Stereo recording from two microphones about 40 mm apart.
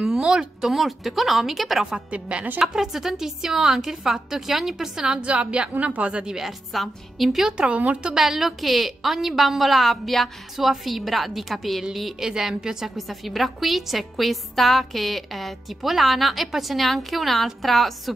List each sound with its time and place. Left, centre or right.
0.0 s a sound: centre
0.6 s a woman's voice: centre
2.1 s a woman's voice: right
2.7 s a woman's voice: centre
5.0 s a woman's voice: right
6.2 s a woman's voice: centre
6.7 s a woman's voice: centre
7.5 s a woman's voice: right
8.2 s a woman's voice: centre
12.9 s a woman's voice: centre